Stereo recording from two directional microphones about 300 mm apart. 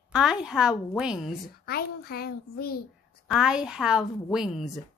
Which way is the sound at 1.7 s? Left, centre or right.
Left.